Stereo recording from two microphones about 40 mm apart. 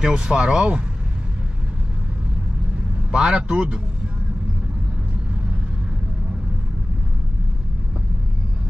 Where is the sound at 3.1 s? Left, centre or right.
Right.